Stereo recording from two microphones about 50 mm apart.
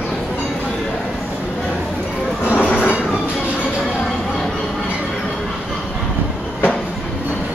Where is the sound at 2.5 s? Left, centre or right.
Left.